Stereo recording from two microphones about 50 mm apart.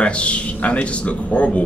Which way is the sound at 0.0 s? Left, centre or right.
Left.